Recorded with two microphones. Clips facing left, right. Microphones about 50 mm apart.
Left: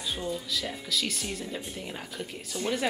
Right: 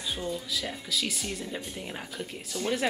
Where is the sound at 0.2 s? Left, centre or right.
Centre.